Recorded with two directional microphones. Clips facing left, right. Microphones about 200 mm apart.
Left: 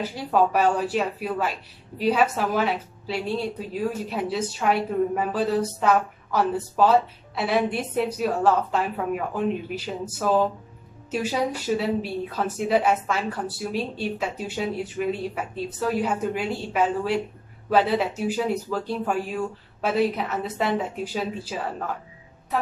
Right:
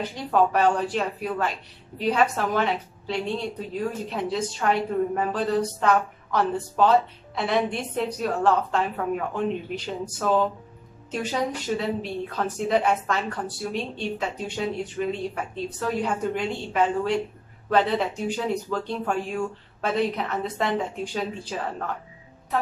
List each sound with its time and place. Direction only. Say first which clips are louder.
0.0 s speech: even; 5° left (ahead or behind)